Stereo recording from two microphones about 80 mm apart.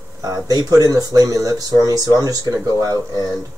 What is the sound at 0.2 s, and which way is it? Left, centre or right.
Speech, right.